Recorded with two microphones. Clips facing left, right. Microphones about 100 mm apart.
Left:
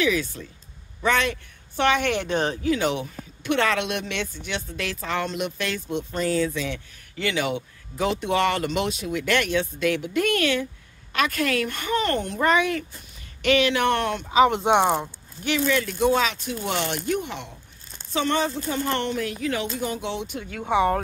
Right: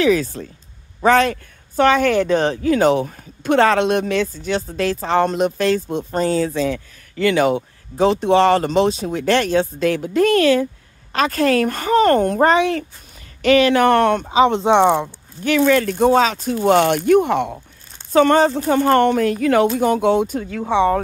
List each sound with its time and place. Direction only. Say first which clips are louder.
0.0 s speech: right 7 dB; 35° right (ahead or behind)
12.5 s speech: right 5 dB; 30° right (ahead or behind); by 14.3 s 50° right (ahead or behind)
14.3 s speech: right 1 dB; 30° right (ahead or behind)
15.4 s speech: right 8 dB; 50° right (ahead or behind)
16.9 s speech: right 13 dB; 60° right (ahead or behind); by 20.9 s 30° right (ahead or behind)